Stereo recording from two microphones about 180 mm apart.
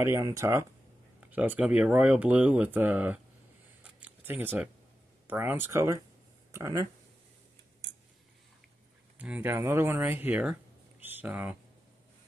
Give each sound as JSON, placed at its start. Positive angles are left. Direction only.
{"t": 0.0, "sound": "speech", "side_deg": -15}
{"t": 3.8, "sound": "camera", "side_deg": -10}
{"t": 5.2, "sound": "speech", "side_deg": -10}
{"t": 9.2, "sound": "speech", "side_deg": -10}